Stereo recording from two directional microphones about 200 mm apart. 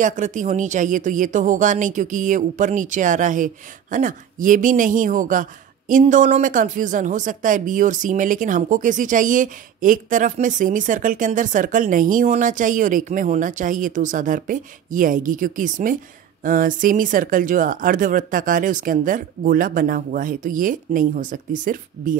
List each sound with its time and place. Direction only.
0.0 s speech: 40° right (ahead or behind)